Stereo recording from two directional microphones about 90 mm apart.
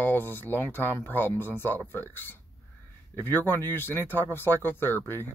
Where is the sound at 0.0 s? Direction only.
20° left (ahead or behind).